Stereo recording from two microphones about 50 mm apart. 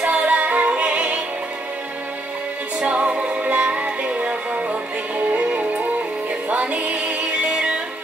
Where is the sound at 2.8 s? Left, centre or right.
Right.